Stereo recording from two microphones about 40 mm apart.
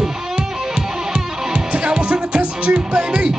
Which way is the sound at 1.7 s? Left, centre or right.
Right.